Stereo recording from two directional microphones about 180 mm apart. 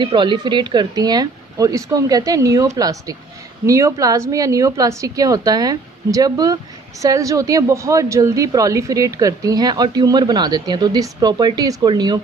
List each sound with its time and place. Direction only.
0.0 s a woman's voice: 25° right (ahead or behind)